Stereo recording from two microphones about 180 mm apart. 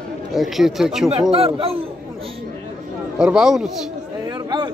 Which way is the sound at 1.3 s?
30° right (ahead or behind).